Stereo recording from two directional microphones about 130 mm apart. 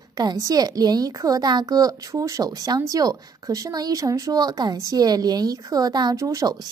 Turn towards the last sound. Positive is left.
turn(degrees=-25)  # may be behind; listen again after turning